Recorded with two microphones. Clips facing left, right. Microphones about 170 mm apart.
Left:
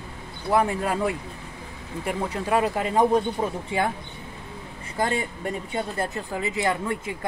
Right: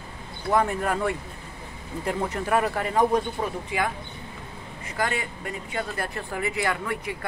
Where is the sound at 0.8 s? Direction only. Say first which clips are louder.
Left 1 dB; 10° left (ahead or behind).